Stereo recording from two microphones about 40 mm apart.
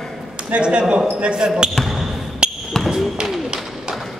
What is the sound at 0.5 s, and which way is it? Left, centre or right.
Speech, right.